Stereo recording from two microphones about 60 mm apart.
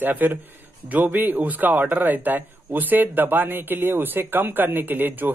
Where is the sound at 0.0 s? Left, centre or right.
Right.